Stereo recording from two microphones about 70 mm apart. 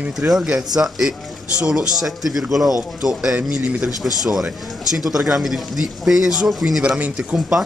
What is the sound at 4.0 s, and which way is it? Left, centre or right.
A man's voice, centre.